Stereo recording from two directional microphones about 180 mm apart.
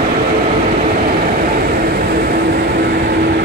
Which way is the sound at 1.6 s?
55° right (ahead or behind).